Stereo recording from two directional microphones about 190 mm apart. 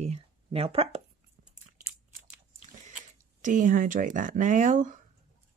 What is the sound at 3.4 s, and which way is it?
Speech, 45° right (ahead or behind).